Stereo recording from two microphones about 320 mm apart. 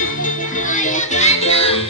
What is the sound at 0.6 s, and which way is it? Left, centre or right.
Music, left.